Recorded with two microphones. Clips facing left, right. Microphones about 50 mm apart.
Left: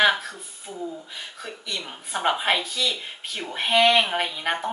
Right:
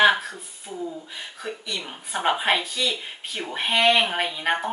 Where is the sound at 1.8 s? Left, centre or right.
Centre.